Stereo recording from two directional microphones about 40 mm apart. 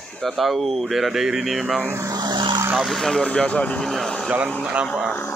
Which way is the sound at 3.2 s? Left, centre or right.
Left.